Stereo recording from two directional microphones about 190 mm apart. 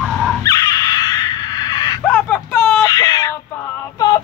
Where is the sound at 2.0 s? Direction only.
5° left (ahead or behind).